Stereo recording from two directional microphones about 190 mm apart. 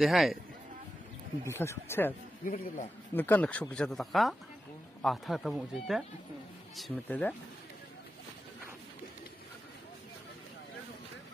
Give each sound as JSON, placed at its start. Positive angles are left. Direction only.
{"t": 0.0, "sound": "speech", "side_deg": 0}
{"t": 1.5, "sound": "speech", "side_deg": 15}
{"t": 2.4, "sound": "a man's voice", "side_deg": 45}
{"t": 3.2, "sound": "speech", "side_deg": 10}